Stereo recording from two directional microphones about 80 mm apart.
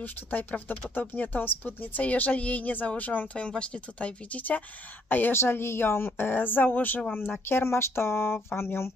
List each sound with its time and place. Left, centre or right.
0.0 s speech: left